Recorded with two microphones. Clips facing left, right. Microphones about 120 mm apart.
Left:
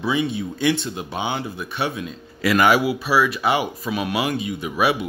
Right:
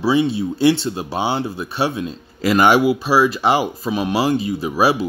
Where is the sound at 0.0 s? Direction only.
30° right (ahead or behind).